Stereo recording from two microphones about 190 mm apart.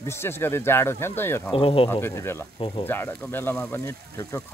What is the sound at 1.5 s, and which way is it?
Speech, 30° left (ahead or behind).